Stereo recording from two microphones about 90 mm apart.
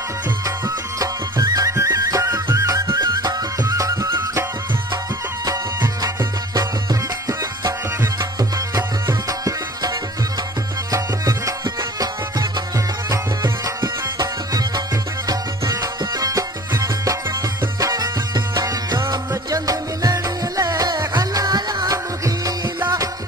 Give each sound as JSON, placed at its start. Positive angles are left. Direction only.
{"t": 0.9, "sound": "music", "side_deg": -40}
{"t": 5.8, "sound": "music", "side_deg": -40}
{"t": 14.1, "sound": "music", "side_deg": -45}